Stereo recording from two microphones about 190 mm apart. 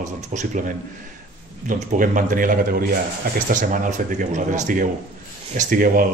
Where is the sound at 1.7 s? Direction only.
45° right (ahead or behind).